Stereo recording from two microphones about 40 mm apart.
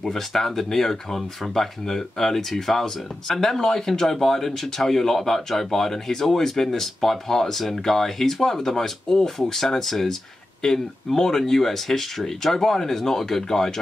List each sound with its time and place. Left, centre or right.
0.0 s speech: centre